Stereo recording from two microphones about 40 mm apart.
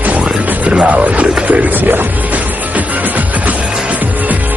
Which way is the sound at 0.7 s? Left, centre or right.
Right.